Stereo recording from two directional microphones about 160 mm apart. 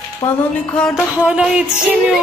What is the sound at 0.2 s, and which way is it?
Speech, 25° left (ahead or behind).